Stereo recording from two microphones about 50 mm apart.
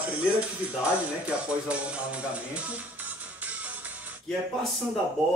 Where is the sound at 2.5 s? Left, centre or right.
Right.